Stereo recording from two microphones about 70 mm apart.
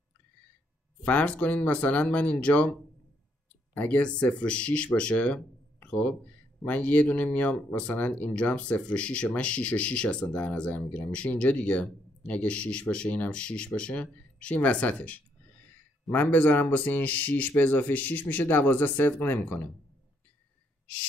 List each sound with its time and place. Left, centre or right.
1.0 s speech: centre
3.7 s speech: left